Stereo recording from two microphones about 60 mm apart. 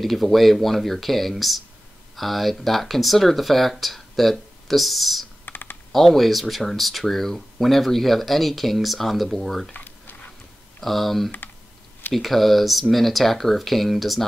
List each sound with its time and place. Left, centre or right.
0.0 s speech: centre
5.4 s computer keyboard: left
5.9 s speech: centre
9.8 s a sound: left
10.8 s speech: centre